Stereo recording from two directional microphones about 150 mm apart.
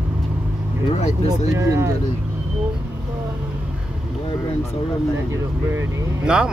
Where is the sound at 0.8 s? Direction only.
45° left (ahead or behind).